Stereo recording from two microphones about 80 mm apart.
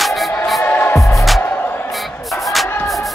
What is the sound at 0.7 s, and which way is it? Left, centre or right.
Music, left.